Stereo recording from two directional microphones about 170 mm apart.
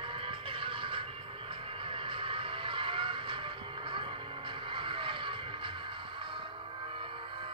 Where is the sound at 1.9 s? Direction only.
30° right (ahead or behind).